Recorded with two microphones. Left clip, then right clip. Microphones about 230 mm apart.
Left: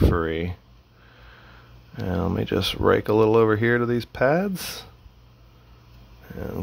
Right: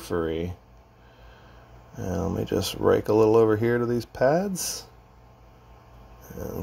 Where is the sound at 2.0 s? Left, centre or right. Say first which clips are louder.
Left 2 dB; left.